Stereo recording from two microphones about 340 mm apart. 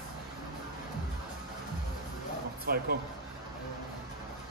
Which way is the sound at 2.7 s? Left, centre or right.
Right.